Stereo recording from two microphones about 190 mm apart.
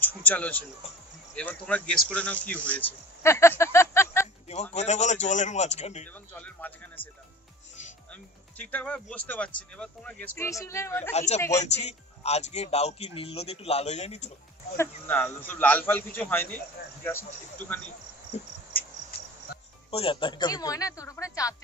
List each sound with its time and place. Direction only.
0.0 s a man's voice: 10° left (ahead or behind)
2.7 s a sound: 10° left (ahead or behind)
4.7 s speech: 35° left (ahead or behind)
6.3 s music: 10° left (ahead or behind)
8.1 s a man's voice: 5° left (ahead or behind)
11.1 s speech: 35° left (ahead or behind)
14.8 s a man's voice: 10° left (ahead or behind)
19.9 s speech: 30° left (ahead or behind)